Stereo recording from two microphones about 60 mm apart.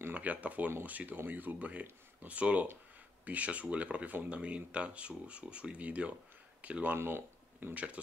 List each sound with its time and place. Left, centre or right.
0.1 s speech: right
7.0 s speech: right
7.7 s speech: right